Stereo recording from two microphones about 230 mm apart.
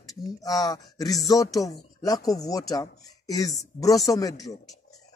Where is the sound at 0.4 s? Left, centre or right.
Centre.